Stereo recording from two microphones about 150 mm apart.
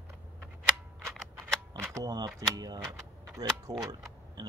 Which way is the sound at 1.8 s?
25° right (ahead or behind).